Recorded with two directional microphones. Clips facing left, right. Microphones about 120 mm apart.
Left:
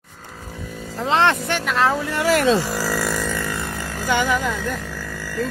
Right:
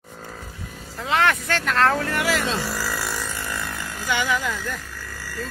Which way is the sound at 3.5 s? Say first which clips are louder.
Left 3 dB; 30° left (ahead or behind).